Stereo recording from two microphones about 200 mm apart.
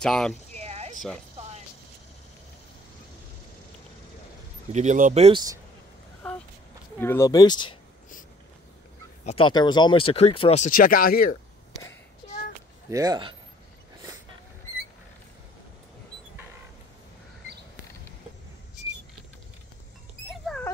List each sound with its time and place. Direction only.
0.0 s speech: 5° left (ahead or behind)
0.6 s a sound: 30° right (ahead or behind)
4.7 s speech: 40° right (ahead or behind)
7.0 s speech: 10° left (ahead or behind)
9.2 s speech: 25° left (ahead or behind); by 11.3 s 45° left (ahead or behind)
12.9 s speech: 20° right (ahead or behind)
20.2 s dog: centre (ahead or behind)